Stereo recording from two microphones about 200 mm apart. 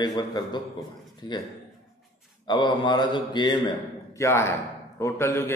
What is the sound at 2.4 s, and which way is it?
A man's voice, 20° left (ahead or behind).